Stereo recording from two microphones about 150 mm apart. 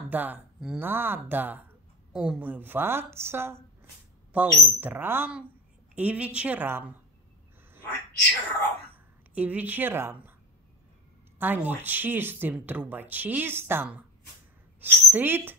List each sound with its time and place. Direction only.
0.1 s speech: 10° right (ahead or behind)
8.9 s speech: 10° right (ahead or behind)
11.3 s a woman's voice: 10° right (ahead or behind)